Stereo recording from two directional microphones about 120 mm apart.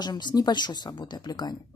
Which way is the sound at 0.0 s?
35° left (ahead or behind).